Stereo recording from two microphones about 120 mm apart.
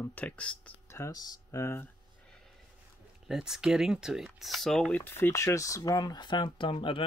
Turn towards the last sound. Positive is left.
turn(degrees=45)  # may be behind; listen again after turning